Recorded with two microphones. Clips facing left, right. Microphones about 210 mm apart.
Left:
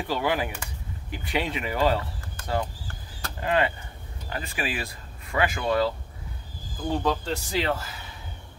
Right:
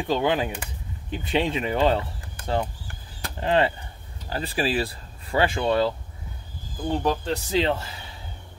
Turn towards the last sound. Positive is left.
turn(degrees=-25)  # may be behind; listen again after turning